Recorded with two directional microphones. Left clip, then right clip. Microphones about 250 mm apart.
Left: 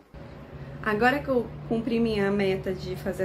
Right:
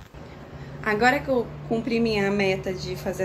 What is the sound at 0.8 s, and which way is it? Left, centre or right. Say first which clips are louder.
A woman's voice: right 3 dB; centre.